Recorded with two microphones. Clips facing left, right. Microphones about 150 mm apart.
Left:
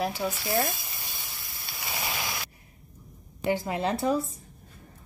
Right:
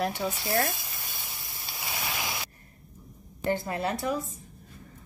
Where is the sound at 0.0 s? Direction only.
5° left (ahead or behind).